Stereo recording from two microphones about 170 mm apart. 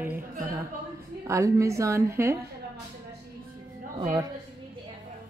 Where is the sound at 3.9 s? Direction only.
30° right (ahead or behind).